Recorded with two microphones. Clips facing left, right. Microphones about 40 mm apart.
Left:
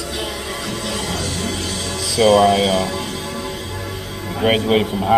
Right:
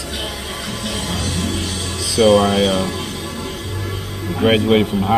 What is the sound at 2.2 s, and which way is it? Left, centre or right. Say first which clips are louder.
Speech: even; centre.